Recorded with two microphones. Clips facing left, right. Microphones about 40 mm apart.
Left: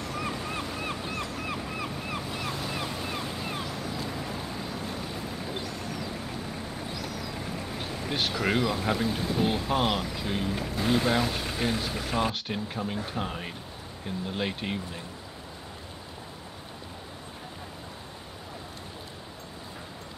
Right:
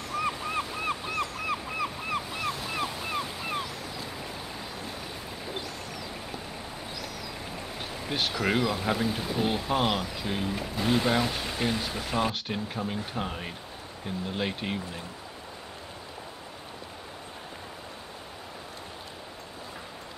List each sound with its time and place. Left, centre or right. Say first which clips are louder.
0.5 s ocean: right 3 dB; right
2.0 s waves: right 2 dB; centre
2.7 s ocean: right 2 dB; centre
7.8 s speech: even; centre